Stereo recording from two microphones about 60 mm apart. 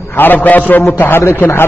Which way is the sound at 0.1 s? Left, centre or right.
Left.